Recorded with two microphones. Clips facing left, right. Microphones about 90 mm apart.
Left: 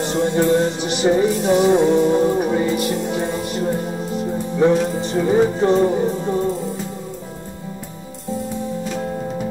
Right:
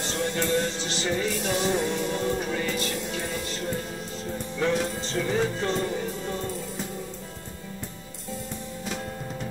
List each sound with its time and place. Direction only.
0.0 s music: 20° left (ahead or behind)